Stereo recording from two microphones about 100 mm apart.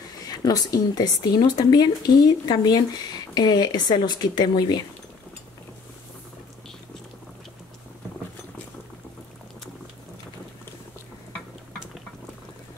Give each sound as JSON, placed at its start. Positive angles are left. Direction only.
{"t": 0.3, "sound": "a woman's voice", "side_deg": 40}